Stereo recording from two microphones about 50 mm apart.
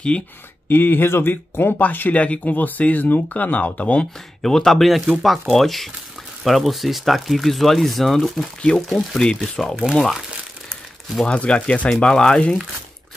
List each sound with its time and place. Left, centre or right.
0.7 s speech: left
1.3 s speech: left
4.4 s speech: centre
11.2 s speech: left